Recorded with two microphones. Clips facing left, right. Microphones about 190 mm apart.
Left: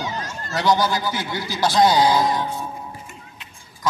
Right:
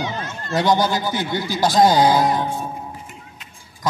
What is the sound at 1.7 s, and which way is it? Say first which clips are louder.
Speech: right 2 dB; 50° right (ahead or behind).